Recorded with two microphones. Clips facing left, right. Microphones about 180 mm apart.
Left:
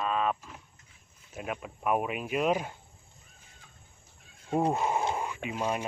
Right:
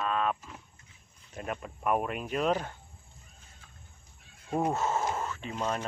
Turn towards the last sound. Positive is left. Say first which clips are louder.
# left 1 dB
turn(degrees=10)  # may be behind; listen again after turning